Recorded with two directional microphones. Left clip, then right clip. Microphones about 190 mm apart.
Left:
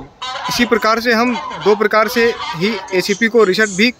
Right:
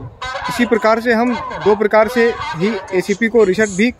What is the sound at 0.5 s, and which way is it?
Speech, 15° right (ahead or behind).